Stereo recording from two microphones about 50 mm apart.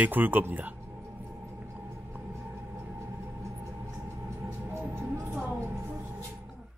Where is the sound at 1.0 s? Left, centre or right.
Right.